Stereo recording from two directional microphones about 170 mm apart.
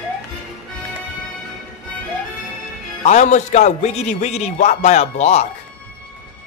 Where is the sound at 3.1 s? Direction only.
45° left (ahead or behind).